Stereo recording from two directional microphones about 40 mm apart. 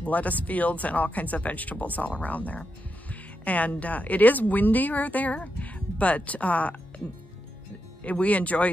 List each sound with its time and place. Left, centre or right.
0.0 s speech: left
8.0 s speech: left